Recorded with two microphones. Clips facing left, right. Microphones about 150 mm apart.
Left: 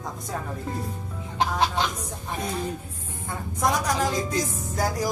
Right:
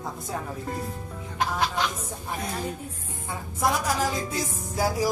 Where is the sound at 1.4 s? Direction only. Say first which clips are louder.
Left 2 dB; 25° left (ahead or behind).